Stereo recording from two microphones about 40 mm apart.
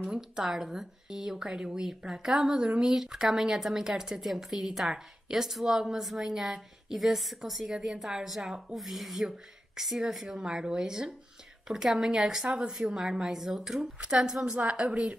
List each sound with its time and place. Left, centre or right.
0.4 s a woman's voice: centre
13.9 s speech: right
14.6 s a woman's voice: right